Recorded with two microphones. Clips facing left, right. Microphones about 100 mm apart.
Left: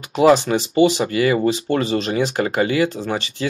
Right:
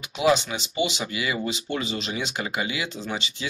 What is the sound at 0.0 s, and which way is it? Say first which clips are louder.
Speech: left 8 dB; 45° left (ahead or behind).